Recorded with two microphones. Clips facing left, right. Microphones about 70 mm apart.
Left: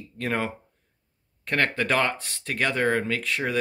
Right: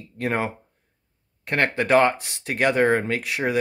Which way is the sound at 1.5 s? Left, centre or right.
Centre.